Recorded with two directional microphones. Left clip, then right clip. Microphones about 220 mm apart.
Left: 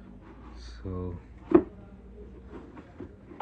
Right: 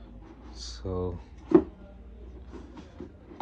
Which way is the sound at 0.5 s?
10° right (ahead or behind).